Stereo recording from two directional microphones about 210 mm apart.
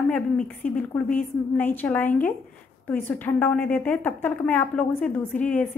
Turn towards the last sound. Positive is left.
turn(degrees=5)  # may be behind; listen again after turning